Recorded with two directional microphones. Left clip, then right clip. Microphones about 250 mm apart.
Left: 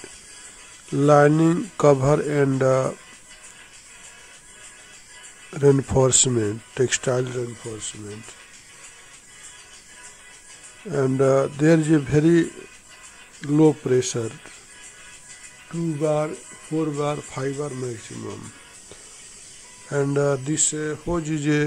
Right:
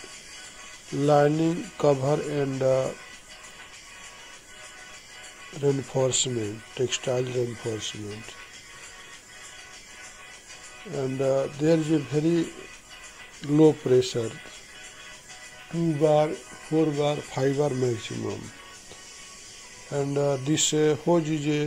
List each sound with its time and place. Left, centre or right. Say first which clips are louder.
0.9 s speech: left 5 dB; left
5.5 s speech: left 8 dB; left
10.9 s speech: left 6 dB; left
16.0 s speech: right 2 dB; left
17.4 s speech: right 4 dB; centre
19.9 s speech: left 4 dB; left
20.5 s speech: right 3 dB; centre
21.3 s speech: left 4 dB; left